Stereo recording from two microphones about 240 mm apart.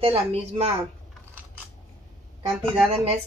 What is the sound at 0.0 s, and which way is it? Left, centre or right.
Speech, right.